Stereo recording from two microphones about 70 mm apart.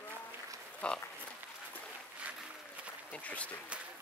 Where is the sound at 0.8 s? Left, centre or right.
Centre.